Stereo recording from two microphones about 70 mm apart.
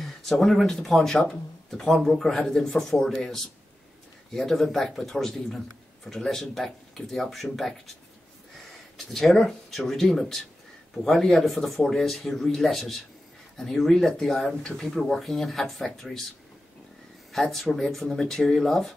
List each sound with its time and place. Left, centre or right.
0.0 s speech: centre
8.9 s speech: centre
17.3 s speech: centre